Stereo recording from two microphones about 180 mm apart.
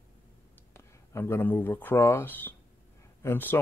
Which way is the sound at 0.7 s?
15° left (ahead or behind).